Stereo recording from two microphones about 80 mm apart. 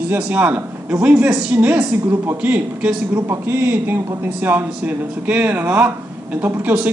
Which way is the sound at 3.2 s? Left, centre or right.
Right.